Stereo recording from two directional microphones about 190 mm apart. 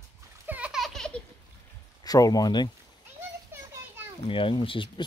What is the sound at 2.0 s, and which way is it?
Speech, 20° left (ahead or behind).